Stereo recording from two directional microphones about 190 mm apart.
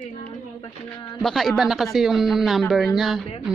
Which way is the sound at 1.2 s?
Centre (ahead or behind).